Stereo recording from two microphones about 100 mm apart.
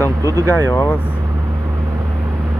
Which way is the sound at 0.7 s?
30° left (ahead or behind).